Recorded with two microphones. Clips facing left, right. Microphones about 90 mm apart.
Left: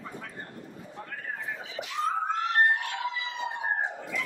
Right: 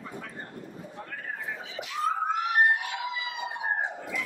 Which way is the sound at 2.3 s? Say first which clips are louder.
Right 1 dB; 10° right (ahead or behind).